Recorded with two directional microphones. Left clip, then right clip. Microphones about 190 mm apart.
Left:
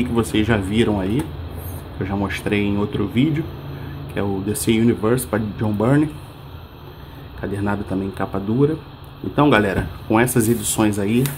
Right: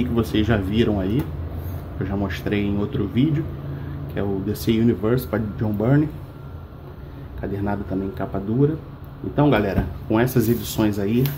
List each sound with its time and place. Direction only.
0.0 s speech: 15° left (ahead or behind)
7.4 s speech: 20° left (ahead or behind)